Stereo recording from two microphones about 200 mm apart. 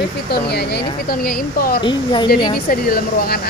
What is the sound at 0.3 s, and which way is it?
Speech, 55° left (ahead or behind).